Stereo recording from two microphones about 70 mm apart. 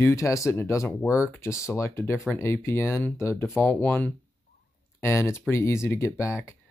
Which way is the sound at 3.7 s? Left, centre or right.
Left.